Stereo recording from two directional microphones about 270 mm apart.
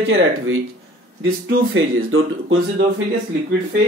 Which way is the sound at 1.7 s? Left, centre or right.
Right.